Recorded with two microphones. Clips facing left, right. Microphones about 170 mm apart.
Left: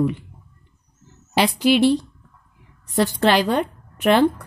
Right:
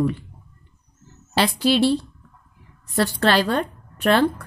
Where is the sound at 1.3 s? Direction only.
15° left (ahead or behind).